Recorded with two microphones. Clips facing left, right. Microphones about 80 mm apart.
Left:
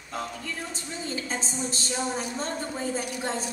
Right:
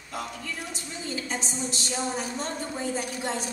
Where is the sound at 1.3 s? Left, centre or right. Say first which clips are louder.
Even; left.